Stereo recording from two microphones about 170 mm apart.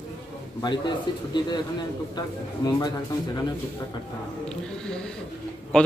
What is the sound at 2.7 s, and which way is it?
Speech, 20° left (ahead or behind).